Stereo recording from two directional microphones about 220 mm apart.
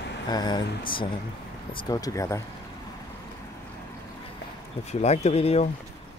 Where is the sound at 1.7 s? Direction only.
15° left (ahead or behind).